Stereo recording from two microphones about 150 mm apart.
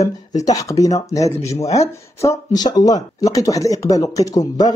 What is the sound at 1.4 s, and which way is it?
Speech, 45° left (ahead or behind).